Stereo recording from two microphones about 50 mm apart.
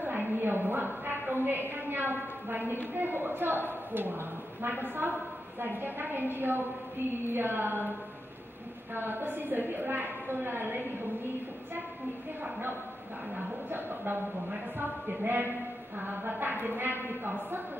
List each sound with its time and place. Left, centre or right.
0.0 s a woman's voice: right
8.9 s a woman's voice: right
13.7 s a woman's voice: right